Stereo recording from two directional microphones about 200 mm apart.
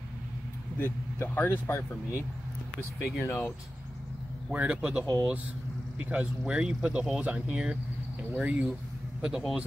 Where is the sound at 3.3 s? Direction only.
10° left (ahead or behind).